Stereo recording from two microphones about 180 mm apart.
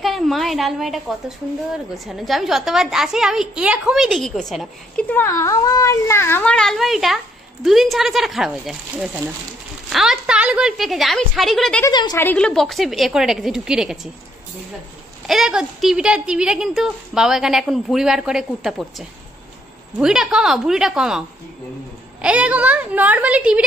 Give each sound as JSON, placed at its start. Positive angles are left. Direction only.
{"t": 0.0, "sound": "a woman's voice", "side_deg": 0}
{"t": 11.8, "sound": "a woman's voice", "side_deg": 20}
{"t": 12.2, "sound": "a woman's voice", "side_deg": 10}
{"t": 15.2, "sound": "a woman's voice", "side_deg": -5}
{"t": 22.2, "sound": "a woman's voice", "side_deg": -5}